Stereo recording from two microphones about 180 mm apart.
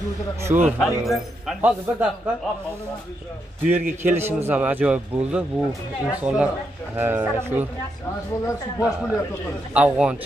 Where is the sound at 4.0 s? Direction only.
10° right (ahead or behind).